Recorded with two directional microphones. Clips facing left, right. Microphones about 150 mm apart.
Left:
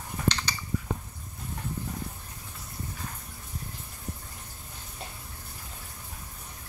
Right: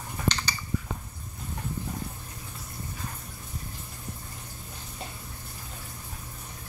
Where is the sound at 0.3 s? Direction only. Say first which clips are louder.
Even; 5° right (ahead or behind).